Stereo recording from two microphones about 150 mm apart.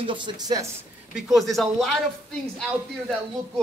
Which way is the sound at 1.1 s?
Centre (ahead or behind).